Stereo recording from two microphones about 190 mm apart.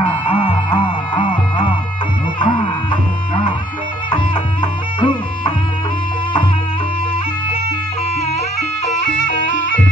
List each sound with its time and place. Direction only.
0.0 s music: 30° left (ahead or behind)